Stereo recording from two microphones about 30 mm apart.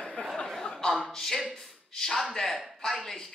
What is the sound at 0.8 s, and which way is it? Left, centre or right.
Speech, left.